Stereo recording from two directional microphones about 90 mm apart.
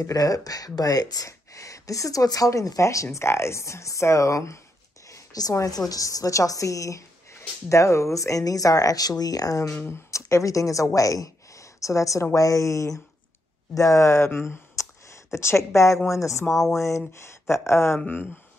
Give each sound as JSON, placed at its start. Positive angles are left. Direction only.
{"t": 0.0, "sound": "speech", "side_deg": 40}
{"t": 5.0, "sound": "a sound", "side_deg": 40}
{"t": 5.9, "sound": "speech", "side_deg": 40}
{"t": 9.7, "sound": "speech", "side_deg": 25}